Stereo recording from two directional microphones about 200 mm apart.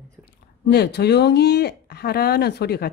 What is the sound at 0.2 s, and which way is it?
Speech, 55° left (ahead or behind).